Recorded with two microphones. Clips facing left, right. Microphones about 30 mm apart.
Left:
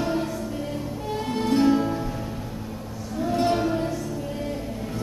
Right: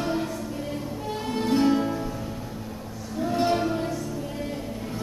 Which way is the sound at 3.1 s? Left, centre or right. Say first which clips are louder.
Left 1 dB; centre.